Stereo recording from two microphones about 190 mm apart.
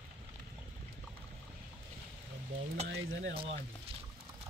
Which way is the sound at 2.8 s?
75° right (ahead or behind).